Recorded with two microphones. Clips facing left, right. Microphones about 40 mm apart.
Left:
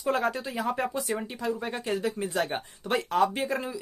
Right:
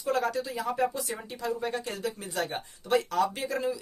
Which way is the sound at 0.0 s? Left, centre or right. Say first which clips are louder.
Left 1 dB; left.